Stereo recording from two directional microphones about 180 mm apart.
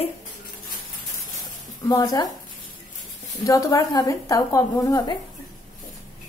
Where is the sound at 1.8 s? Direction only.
20° left (ahead or behind).